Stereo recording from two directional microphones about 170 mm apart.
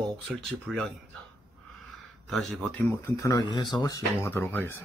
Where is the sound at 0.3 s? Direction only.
Centre (ahead or behind).